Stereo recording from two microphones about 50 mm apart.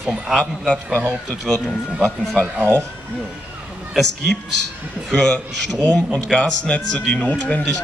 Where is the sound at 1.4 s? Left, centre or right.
Centre.